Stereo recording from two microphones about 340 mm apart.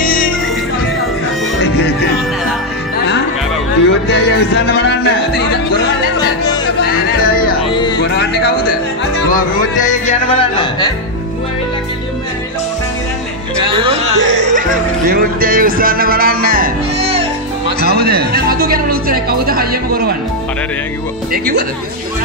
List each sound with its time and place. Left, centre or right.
3.8 s speech: left
7.2 s music: left
13.7 s speech: centre
14.2 s music: right
15.0 s speech: right
21.3 s speech: right